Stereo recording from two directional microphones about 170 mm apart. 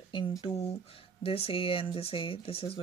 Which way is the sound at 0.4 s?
35° left (ahead or behind).